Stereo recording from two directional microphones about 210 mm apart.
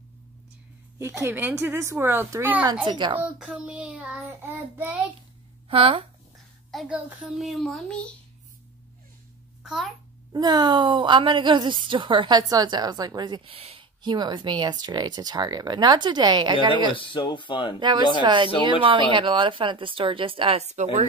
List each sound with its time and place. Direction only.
0.9 s speech: 10° right (ahead or behind)
2.6 s a woman's voice: 20° right (ahead or behind)
3.2 s child singing: 5° right (ahead or behind)
5.7 s a woman's voice: 25° right (ahead or behind)
6.7 s child singing: centre (ahead or behind)
9.6 s a child's voice: centre (ahead or behind)
10.3 s a woman's voice: 20° right (ahead or behind)
16.9 s speech: 25° left (ahead or behind)
17.7 s a woman's voice: 20° right (ahead or behind)